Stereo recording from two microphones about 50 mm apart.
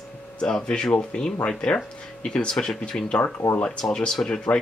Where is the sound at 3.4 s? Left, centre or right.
Left.